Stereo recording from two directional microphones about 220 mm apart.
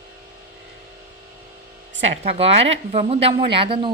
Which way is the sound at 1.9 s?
30° right (ahead or behind).